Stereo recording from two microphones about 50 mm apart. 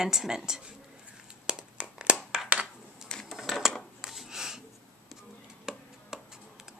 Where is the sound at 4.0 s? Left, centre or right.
Centre.